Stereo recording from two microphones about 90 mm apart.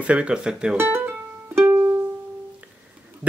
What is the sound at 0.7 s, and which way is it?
Music, 25° right (ahead or behind).